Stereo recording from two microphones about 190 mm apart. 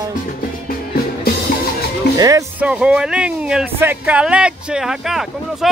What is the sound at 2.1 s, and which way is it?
Music, 20° right (ahead or behind).